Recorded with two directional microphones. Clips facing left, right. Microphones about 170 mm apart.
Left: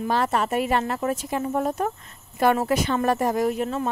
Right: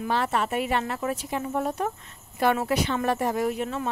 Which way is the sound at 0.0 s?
40° left (ahead or behind).